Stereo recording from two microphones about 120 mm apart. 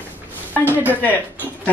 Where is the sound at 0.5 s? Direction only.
15° left (ahead or behind).